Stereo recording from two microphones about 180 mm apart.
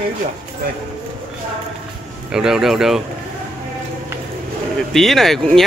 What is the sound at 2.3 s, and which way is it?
Speech, 5° right (ahead or behind).